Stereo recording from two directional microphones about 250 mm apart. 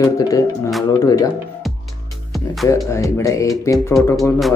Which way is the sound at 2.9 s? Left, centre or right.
Centre.